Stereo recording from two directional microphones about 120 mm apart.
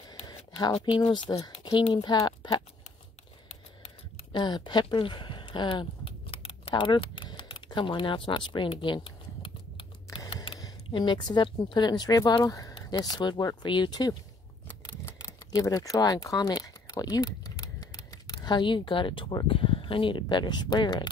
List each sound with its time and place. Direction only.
0.3 s a sound: 30° left (ahead or behind)
0.8 s speech: 40° left (ahead or behind)
4.3 s speech: 40° left (ahead or behind)
6.0 s typing: 50° left (ahead or behind)
10.3 s a sound: 50° left (ahead or behind)
10.6 s speech: 40° left (ahead or behind)